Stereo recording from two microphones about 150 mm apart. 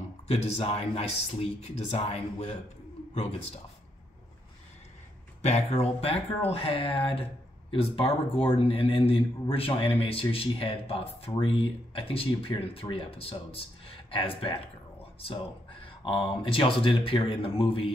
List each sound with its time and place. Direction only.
0.3 s speech: 45° left (ahead or behind)
5.4 s a man's voice: 45° left (ahead or behind)